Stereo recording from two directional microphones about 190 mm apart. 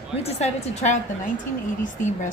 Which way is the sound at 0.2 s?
35° left (ahead or behind).